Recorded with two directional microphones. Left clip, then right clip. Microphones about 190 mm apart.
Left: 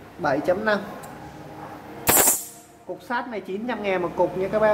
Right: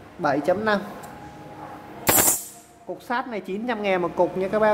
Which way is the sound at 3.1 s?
65° right (ahead or behind).